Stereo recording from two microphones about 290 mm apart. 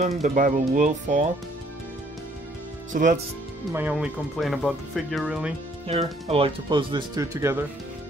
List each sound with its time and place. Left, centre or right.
0.0 s speech: right
2.9 s speech: right
3.7 s speech: centre
5.9 s speech: right